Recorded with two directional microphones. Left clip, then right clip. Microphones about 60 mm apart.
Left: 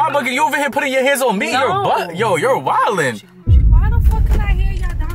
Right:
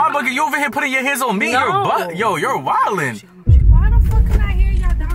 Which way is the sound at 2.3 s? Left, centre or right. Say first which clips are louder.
Left 4 dB; left.